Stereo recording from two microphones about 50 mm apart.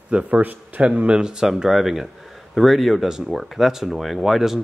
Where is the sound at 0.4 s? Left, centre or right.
Right.